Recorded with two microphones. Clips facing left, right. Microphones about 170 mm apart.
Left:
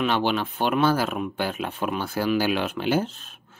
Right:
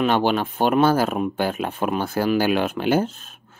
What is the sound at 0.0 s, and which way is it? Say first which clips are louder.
Speech: right 4 dB; 45° right (ahead or behind).